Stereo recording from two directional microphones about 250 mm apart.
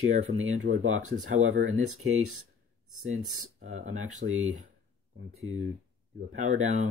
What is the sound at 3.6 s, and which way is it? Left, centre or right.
Speech, right.